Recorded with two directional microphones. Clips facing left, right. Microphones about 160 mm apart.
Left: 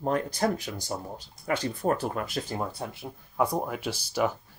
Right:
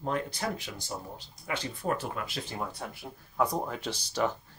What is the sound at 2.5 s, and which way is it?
Speech, 30° left (ahead or behind).